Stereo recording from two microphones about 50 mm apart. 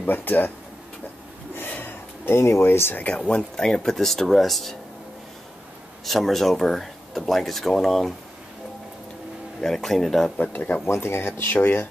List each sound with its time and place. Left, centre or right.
0.0 s speech: left
1.5 s a sound: left
2.4 s speech: left
3.2 s speech: left
3.5 s speech: centre
6.0 s speech: centre
9.6 s speech: centre
10.3 s speech: left
10.9 s speech: left